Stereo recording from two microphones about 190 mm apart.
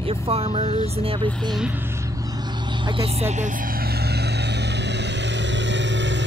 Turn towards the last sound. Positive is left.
turn(degrees=-70)  # may be behind; listen again after turning